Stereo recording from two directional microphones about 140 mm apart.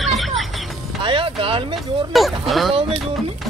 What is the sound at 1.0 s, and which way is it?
Music, 40° right (ahead or behind).